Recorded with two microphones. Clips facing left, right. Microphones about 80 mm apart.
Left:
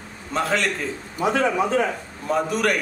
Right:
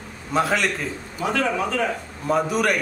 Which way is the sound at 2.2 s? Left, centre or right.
Centre.